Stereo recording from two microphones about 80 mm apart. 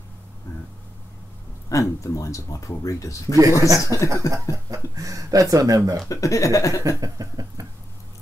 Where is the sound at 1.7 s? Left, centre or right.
Left.